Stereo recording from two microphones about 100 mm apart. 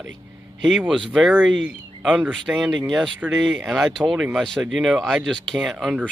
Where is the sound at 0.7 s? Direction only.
5° left (ahead or behind).